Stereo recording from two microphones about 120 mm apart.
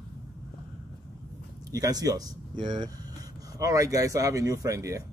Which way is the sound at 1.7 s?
30° right (ahead or behind).